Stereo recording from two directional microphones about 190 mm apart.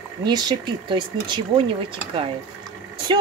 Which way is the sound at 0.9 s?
25° right (ahead or behind).